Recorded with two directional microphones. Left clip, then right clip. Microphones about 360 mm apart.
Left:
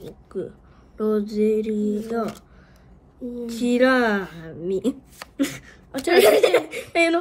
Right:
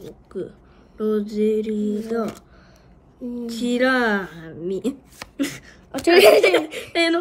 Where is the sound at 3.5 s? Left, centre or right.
Centre.